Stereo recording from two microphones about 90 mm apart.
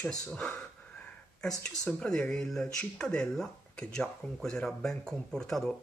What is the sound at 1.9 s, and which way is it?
Speech, 10° left (ahead or behind).